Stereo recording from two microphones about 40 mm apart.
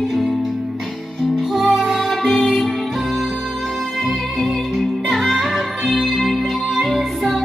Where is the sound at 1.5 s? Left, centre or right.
Centre.